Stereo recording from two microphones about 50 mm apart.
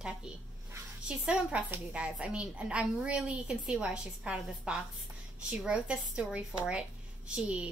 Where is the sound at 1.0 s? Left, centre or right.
Right.